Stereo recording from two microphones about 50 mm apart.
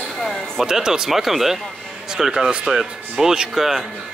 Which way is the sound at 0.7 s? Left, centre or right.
Centre.